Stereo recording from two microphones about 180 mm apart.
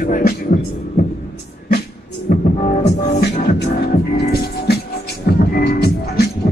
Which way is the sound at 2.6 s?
40° left (ahead or behind).